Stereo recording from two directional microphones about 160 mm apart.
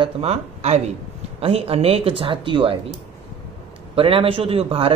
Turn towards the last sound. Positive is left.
turn(degrees=-35)  # may be behind; listen again after turning